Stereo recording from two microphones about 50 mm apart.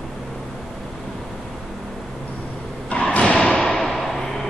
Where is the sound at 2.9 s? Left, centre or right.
Left.